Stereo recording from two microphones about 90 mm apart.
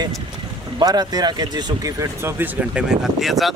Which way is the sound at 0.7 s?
50° right (ahead or behind).